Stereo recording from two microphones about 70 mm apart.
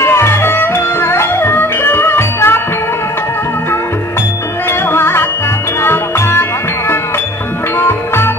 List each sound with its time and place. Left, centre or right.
0.0 s music: left
4.6 s music: left
7.7 s music: left